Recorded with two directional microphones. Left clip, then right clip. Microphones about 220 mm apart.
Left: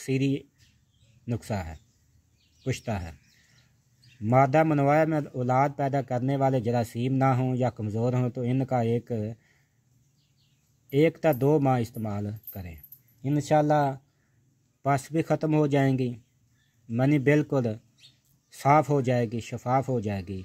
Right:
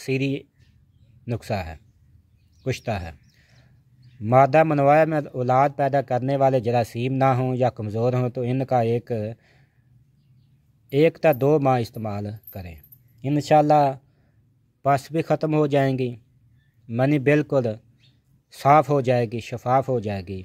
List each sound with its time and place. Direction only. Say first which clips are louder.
0.0 s a man's voice: right 3 dB; 10° right (ahead or behind)
4.2 s a man's voice: right 5 dB; 10° right (ahead or behind)
10.9 s a man's voice: right 5 dB; 10° right (ahead or behind)